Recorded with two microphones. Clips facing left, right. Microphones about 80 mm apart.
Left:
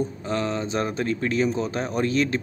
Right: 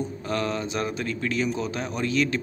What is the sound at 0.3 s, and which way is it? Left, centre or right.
Speech, left.